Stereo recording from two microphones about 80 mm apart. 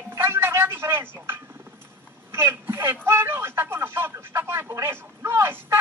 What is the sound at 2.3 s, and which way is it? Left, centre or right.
Speech, right.